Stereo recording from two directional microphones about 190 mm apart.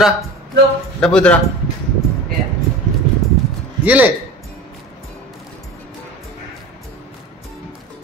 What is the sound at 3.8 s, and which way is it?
Speech, 10° right (ahead or behind).